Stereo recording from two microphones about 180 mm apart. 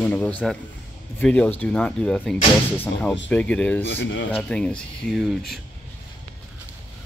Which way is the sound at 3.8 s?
85° left.